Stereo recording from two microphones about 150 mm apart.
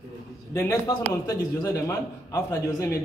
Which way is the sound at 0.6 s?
15° left (ahead or behind).